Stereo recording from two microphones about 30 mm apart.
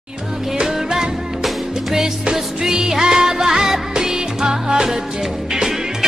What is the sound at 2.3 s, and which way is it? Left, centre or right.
Music, centre.